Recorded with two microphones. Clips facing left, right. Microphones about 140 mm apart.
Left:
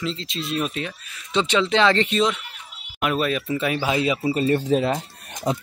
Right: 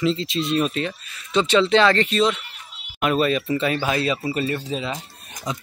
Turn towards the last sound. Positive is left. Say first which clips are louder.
# left 5 dB
turn(degrees=50)  # may be behind; listen again after turning